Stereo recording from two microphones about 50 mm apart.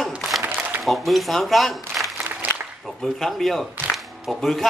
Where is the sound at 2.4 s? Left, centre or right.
Right.